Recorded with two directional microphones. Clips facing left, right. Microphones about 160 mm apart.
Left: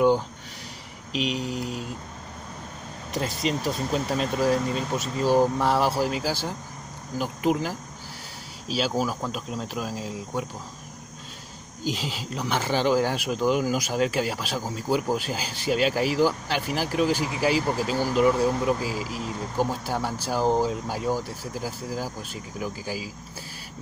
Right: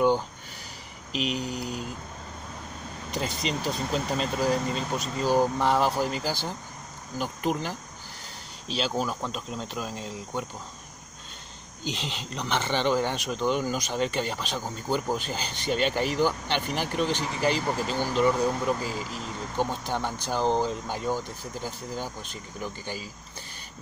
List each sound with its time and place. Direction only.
1.1 s speech: centre (ahead or behind)
3.1 s speech: centre (ahead or behind)
11.8 s speech: 5° left (ahead or behind)